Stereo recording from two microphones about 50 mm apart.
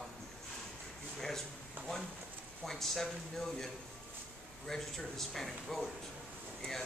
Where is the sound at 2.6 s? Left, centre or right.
Centre.